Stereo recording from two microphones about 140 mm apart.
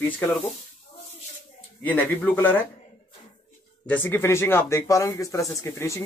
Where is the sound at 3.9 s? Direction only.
15° left (ahead or behind).